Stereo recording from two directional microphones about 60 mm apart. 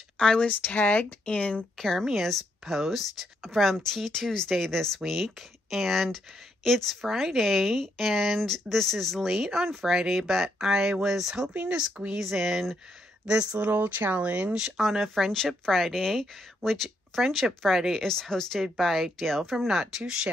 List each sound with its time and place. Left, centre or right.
0.2 s speech: centre
0.5 s speech: left
1.8 s speech: centre
11.7 s speech: centre
12.2 s speech: centre
13.3 s speech: centre
13.6 s speech: right
14.6 s speech: centre